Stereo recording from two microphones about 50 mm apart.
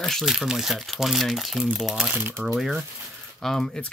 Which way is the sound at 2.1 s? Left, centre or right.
Right.